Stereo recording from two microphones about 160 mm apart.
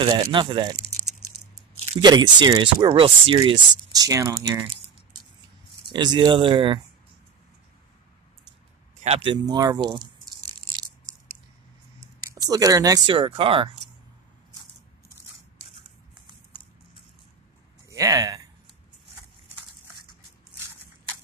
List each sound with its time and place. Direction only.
0.0 s speech: 30° right (ahead or behind)
2.0 s speech: 25° right (ahead or behind)
5.9 s speech: 25° right (ahead or behind)
9.0 s speech: 35° right (ahead or behind)
12.4 s speech: 20° right (ahead or behind)
17.8 s a sound: 20° right (ahead or behind)